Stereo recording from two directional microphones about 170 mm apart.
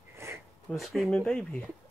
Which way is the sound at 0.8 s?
Centre (ahead or behind).